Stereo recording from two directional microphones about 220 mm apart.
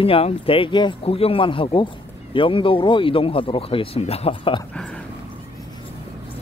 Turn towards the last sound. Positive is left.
turn(degrees=5)  # may be behind; listen again after turning